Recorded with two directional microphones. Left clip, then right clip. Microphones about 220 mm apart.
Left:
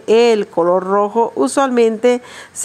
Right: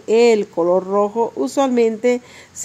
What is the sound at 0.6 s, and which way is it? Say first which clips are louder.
Speech: left 3 dB; 25° left (ahead or behind).